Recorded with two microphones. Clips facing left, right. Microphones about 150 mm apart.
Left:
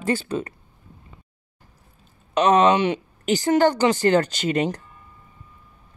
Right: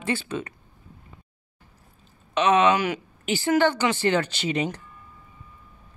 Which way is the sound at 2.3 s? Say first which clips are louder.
Left 3 dB; 40° left (ahead or behind).